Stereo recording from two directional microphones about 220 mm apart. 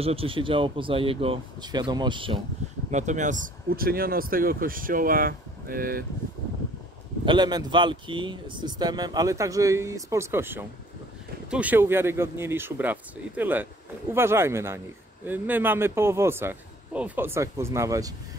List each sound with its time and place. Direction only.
0.0 s speech: 25° right (ahead or behind)
2.9 s speech: 35° right (ahead or behind)
7.2 s speech: 20° right (ahead or behind)